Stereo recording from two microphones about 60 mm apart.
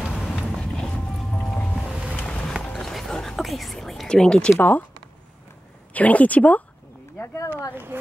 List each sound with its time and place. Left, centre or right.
0.6 s boat: centre
2.1 s vehicle: left
2.6 s whispering: centre
4.1 s speech: centre
4.6 s speech: left
5.9 s speech: left
7.2 s a sound: left
7.9 s speech: right